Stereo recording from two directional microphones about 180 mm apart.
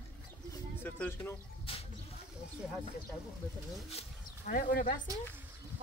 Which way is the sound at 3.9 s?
35° left (ahead or behind).